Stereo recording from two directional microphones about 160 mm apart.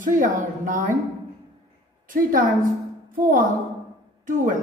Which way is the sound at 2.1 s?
60° right (ahead or behind).